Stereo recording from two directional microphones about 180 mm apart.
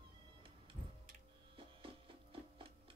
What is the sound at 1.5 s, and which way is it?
Music, 30° right (ahead or behind).